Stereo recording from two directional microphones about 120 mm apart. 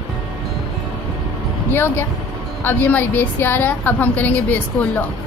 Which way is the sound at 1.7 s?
20° left (ahead or behind).